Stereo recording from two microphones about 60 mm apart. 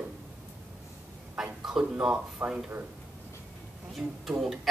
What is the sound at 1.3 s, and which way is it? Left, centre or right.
Speech, centre.